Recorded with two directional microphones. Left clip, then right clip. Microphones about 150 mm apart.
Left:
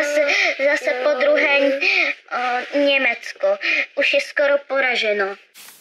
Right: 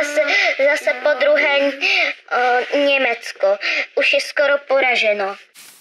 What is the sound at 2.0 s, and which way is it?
Speech, 30° right (ahead or behind).